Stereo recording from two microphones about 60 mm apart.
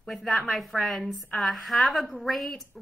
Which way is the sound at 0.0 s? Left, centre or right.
Centre.